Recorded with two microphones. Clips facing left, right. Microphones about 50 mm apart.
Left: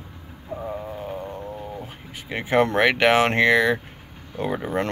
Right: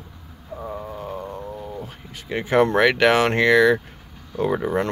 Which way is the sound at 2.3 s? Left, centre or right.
Left.